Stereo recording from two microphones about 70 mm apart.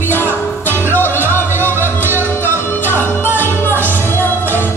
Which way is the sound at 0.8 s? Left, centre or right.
Left.